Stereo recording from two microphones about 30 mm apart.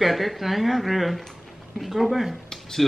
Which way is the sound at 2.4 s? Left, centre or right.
Centre.